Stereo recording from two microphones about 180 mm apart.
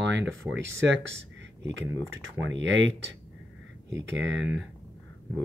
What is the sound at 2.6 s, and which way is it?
Speech, 90° right.